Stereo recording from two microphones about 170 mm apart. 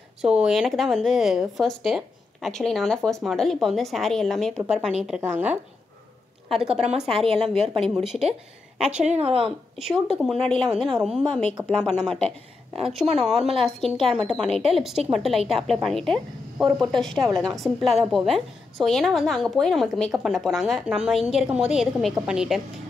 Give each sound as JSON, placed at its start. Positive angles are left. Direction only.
{"t": 0.2, "sound": "a woman's voice", "side_deg": -5}
{"t": 7.1, "sound": "speech", "side_deg": -35}
{"t": 7.7, "sound": "a woman's voice", "side_deg": 0}
{"t": 9.0, "sound": "speech", "side_deg": -40}
{"t": 9.8, "sound": "a woman's voice", "side_deg": 0}